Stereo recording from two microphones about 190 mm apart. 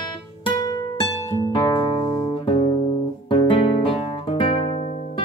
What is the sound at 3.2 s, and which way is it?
Guitar, 25° left (ahead or behind).